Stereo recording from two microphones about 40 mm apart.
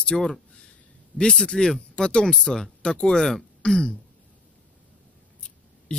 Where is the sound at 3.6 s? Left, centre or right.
Left.